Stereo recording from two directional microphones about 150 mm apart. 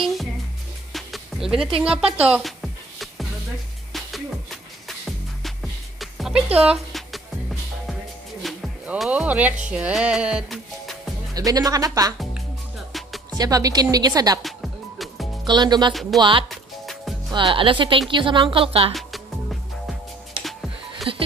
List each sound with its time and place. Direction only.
0.9 s music: centre (ahead or behind)
4.8 s music: centre (ahead or behind)
8.8 s speech: 5° right (ahead or behind)
11.3 s speech: 25° right (ahead or behind)
13.3 s speech: 25° right (ahead or behind)
14.4 s music: centre (ahead or behind)
15.4 s speech: 30° right (ahead or behind)
15.9 s speech: centre (ahead or behind)
16.2 s a woman's voice: 35° right (ahead or behind)
16.4 s music: centre (ahead or behind)
17.3 s a woman's voice: 35° right (ahead or behind)
18.9 s music: centre (ahead or behind)
21.1 s a sound: 35° right (ahead or behind)